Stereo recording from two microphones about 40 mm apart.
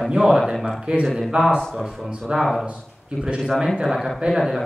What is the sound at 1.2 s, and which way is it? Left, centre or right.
Speech, centre.